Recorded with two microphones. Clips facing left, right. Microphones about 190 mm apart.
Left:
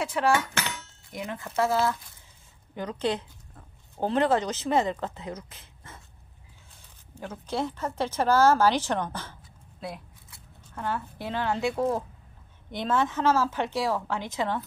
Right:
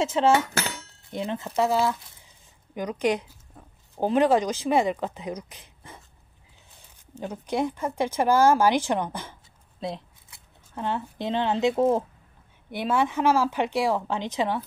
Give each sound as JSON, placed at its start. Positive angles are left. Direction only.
{"t": 0.0, "sound": "a woman's voice", "side_deg": -20}
{"t": 0.6, "sound": "speech", "side_deg": -35}
{"t": 7.2, "sound": "a woman's voice", "side_deg": -15}